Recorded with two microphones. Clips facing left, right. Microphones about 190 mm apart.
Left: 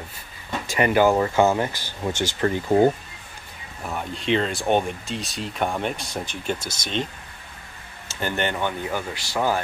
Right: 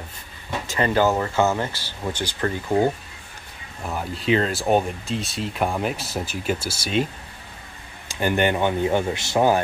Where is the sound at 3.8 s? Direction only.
Centre (ahead or behind).